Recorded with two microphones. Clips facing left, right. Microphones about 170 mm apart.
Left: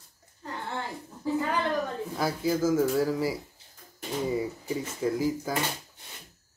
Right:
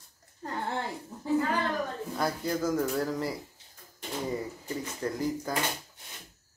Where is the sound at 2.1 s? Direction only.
5° left (ahead or behind).